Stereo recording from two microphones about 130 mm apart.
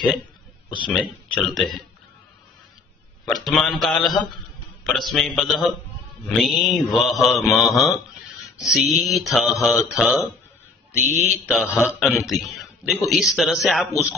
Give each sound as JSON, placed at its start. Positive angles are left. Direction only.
{"t": 0.8, "sound": "mantra", "side_deg": 0}
{"t": 3.3, "sound": "mantra", "side_deg": 0}
{"t": 11.2, "sound": "mantra", "side_deg": -5}